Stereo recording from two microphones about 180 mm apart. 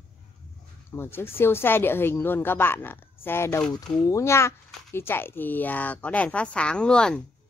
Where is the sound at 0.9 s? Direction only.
10° left (ahead or behind).